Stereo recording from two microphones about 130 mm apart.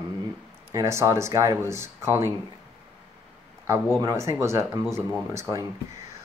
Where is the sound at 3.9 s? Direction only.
25° right (ahead or behind).